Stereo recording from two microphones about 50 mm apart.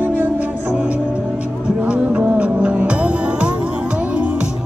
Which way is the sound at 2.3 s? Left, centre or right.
Right.